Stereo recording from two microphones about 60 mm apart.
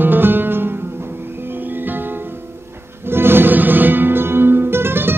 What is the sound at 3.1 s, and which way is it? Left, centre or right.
Music, right.